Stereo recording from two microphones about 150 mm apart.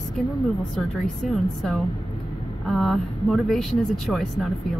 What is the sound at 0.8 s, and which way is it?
Speech, centre (ahead or behind).